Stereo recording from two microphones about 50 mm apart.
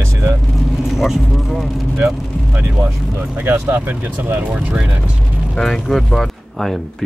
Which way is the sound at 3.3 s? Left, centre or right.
Right.